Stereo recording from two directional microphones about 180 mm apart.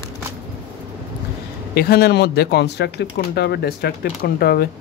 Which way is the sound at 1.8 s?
60° left (ahead or behind).